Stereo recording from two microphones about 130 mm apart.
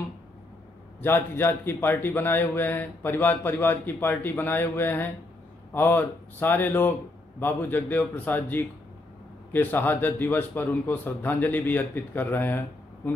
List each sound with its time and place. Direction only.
1.0 s a man's voice: 15° left (ahead or behind)